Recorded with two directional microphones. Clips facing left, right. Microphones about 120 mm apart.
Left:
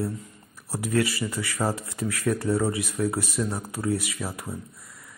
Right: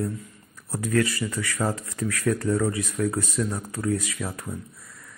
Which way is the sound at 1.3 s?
20° left (ahead or behind).